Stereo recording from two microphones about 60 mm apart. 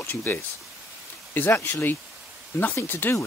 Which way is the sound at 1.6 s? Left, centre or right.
Left.